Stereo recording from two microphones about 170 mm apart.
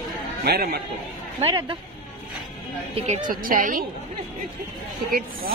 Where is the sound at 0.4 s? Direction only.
60° right (ahead or behind).